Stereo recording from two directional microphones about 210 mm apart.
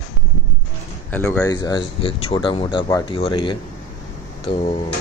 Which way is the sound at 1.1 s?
10° left (ahead or behind).